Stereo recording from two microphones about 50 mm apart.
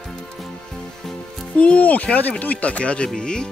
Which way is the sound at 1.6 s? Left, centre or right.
Left.